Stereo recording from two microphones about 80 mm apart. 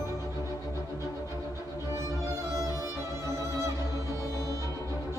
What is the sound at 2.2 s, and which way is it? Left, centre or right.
Music, right.